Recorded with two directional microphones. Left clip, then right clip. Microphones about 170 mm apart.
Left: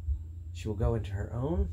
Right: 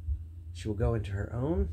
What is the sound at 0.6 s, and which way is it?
Speech, 40° right (ahead or behind).